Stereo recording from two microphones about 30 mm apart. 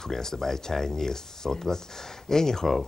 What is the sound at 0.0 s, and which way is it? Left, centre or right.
Speech, centre.